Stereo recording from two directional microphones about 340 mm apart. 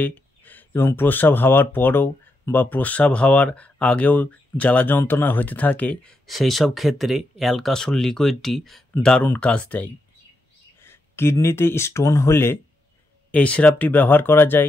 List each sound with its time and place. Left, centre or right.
0.0 s speech: centre